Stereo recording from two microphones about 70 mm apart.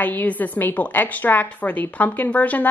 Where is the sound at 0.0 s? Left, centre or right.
Left.